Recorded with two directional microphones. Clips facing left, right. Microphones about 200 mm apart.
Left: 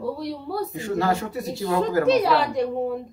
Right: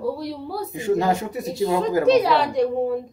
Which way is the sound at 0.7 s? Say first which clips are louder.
Right 5 dB; 15° right (ahead or behind).